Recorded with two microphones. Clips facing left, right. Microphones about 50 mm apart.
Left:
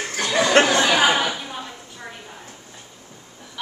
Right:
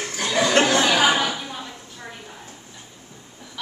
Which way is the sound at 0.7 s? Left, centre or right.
Centre.